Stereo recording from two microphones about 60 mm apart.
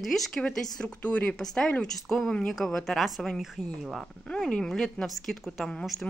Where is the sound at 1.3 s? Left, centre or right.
Centre.